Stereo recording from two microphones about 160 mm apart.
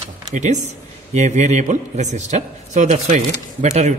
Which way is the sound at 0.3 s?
50° right (ahead or behind).